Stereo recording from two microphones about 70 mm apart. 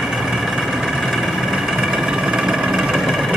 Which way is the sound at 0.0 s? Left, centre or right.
Centre.